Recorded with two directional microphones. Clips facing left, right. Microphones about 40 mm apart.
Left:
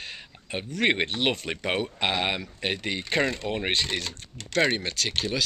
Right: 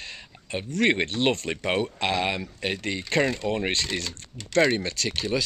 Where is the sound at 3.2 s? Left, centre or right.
Centre.